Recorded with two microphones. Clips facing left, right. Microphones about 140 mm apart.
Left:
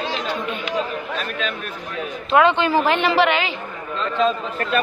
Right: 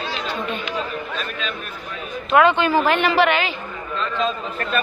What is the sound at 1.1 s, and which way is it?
Chatter, 60° left (ahead or behind).